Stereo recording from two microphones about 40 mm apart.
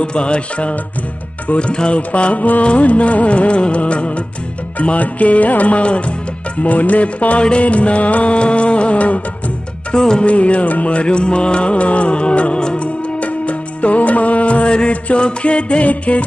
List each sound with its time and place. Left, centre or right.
0.0 s music: left
9.9 s music: centre
10.2 s music: left